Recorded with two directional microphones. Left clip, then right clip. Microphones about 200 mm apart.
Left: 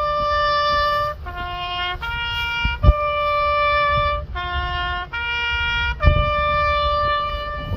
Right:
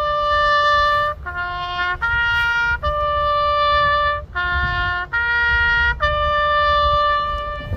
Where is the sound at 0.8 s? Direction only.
15° right (ahead or behind).